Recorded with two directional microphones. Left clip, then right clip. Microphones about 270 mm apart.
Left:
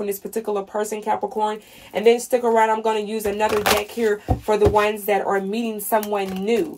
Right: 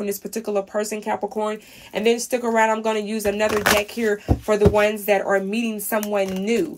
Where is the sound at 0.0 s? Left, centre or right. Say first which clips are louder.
Left 2 dB; centre.